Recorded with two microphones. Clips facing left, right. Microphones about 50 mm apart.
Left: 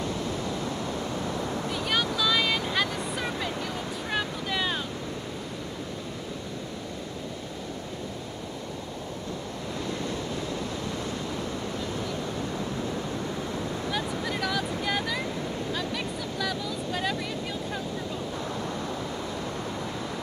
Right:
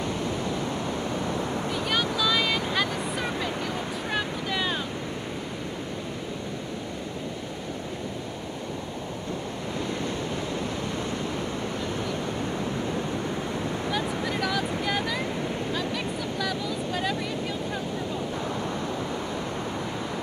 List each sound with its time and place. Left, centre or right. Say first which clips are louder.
0.0 s vehicle: right 2 dB; right
2.1 s vehicle: right 1 dB; centre
14.2 s vehicle: right 2 dB; centre